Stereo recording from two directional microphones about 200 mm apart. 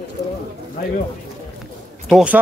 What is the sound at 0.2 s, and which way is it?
Speech, 55° left (ahead or behind).